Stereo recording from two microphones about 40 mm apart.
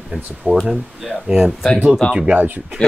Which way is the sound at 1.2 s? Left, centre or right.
Centre.